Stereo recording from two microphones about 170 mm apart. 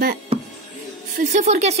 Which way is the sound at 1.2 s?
45° right (ahead or behind).